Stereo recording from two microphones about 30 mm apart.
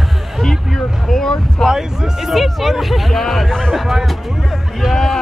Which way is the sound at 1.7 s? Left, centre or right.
Centre.